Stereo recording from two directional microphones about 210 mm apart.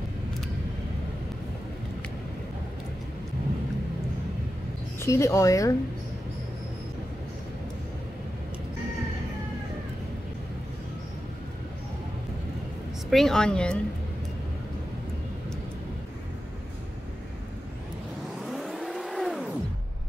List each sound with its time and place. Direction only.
5.0 s speech: 15° left (ahead or behind)
13.1 s a woman's voice: centre (ahead or behind)
18.4 s vehicle: centre (ahead or behind)